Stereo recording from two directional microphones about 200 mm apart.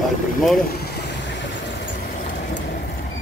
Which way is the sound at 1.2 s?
65° left (ahead or behind).